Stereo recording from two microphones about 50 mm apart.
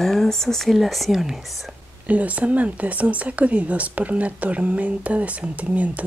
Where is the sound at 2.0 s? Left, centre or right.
Right.